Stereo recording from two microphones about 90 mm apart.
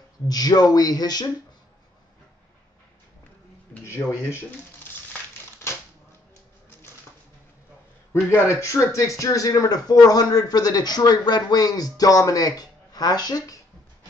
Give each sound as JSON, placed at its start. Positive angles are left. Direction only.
{"t": 0.3, "sound": "speech", "side_deg": 45}
{"t": 3.8, "sound": "speech", "side_deg": 30}
{"t": 8.1, "sound": "speech", "side_deg": 30}